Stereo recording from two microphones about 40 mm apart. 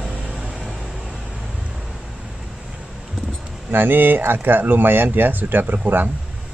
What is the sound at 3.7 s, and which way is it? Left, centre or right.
Speech, right.